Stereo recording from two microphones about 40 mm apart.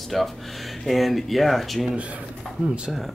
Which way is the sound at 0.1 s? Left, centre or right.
Centre.